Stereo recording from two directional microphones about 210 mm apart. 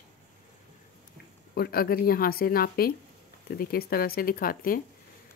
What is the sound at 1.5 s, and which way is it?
Speech, 45° left (ahead or behind).